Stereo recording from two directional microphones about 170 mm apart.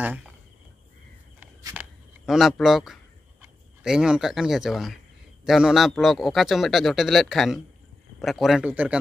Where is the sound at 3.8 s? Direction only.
5° right (ahead or behind).